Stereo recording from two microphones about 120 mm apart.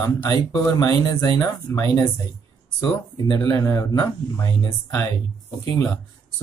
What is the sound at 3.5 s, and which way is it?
Speech, 25° left (ahead or behind).